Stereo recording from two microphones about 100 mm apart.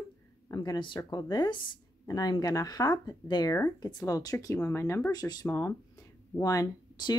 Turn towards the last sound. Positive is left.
turn(degrees=40)  # may be behind; listen again after turning